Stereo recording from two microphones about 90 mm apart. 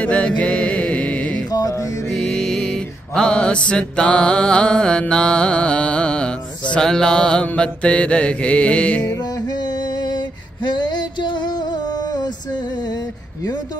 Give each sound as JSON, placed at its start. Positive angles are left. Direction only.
{"t": 0.0, "sound": "mantra", "side_deg": 15}
{"t": 2.1, "sound": "music", "side_deg": 5}
{"t": 3.2, "sound": "mantra", "side_deg": 10}
{"t": 10.6, "sound": "a sound", "side_deg": 55}